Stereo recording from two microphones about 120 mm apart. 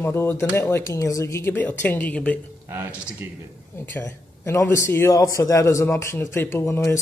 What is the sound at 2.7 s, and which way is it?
Speech, 20° right (ahead or behind).